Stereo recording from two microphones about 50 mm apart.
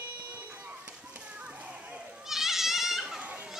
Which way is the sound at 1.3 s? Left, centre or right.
Right.